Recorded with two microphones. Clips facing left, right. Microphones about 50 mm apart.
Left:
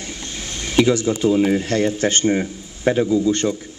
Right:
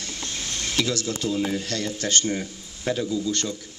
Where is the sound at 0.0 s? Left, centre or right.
Left.